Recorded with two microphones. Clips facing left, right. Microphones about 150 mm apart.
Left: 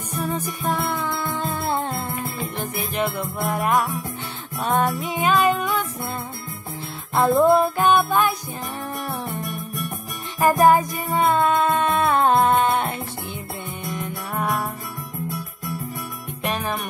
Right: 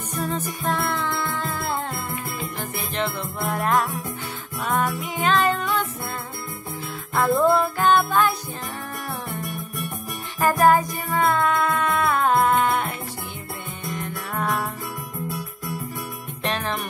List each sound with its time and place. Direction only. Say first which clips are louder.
0.2 s music: left 1 dB; 15° left (ahead or behind)
3.0 s music: left 2 dB; 15° left (ahead or behind)
5.2 s music: left 2 dB; 10° left (ahead or behind)
7.2 s music: left 3 dB; 20° left (ahead or behind)
10.4 s music: left 2 dB; 20° left (ahead or behind)
16.4 s music: left 1 dB; 10° left (ahead or behind)